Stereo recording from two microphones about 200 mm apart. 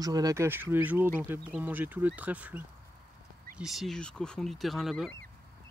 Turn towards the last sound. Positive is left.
turn(degrees=0)  # may be behind; listen again after turning